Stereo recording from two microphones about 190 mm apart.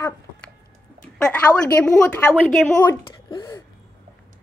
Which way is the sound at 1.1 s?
5° left (ahead or behind).